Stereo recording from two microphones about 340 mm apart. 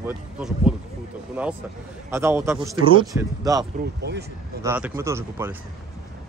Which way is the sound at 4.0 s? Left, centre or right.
Right.